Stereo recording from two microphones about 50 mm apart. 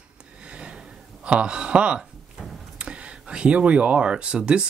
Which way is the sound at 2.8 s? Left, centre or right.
Right.